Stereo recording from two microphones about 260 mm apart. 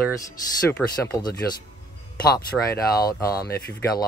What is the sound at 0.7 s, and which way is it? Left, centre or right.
Speech, centre.